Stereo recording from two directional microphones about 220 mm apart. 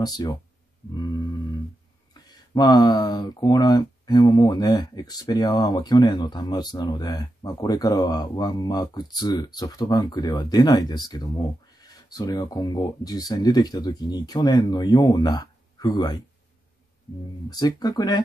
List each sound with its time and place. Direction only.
0.0 s speech: 15° left (ahead or behind)
0.9 s grunt: 20° left (ahead or behind)
2.2 s speech: 20° left (ahead or behind)
17.5 s speech: 15° left (ahead or behind)